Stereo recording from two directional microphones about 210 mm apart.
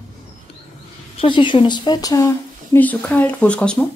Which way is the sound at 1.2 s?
25° left (ahead or behind).